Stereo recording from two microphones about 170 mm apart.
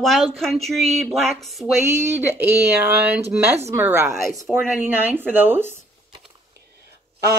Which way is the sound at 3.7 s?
15° right (ahead or behind).